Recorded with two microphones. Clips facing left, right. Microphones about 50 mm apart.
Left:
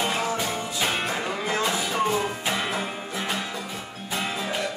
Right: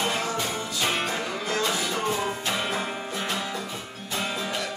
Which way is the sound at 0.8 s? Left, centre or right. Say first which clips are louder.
Even; centre.